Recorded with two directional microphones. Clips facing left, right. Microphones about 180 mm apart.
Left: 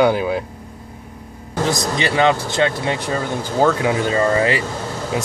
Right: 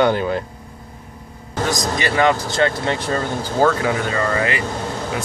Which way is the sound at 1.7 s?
20° left (ahead or behind).